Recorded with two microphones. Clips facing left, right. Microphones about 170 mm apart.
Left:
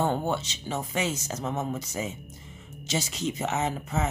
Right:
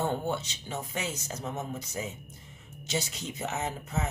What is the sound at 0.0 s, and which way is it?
Speech, 90° left.